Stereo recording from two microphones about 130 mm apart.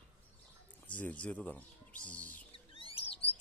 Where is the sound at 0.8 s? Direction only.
10° left (ahead or behind).